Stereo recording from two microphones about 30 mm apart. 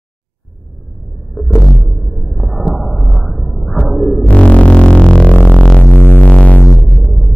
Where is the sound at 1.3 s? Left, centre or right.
Centre.